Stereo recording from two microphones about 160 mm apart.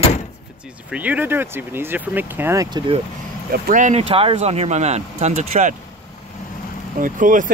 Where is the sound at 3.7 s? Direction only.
50° right (ahead or behind).